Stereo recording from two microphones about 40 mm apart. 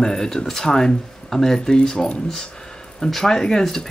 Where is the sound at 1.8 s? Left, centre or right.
Left.